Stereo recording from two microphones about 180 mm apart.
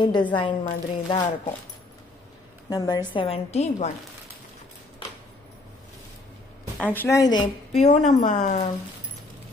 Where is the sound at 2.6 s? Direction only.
20° left (ahead or behind); by 3.9 s 40° left (ahead or behind).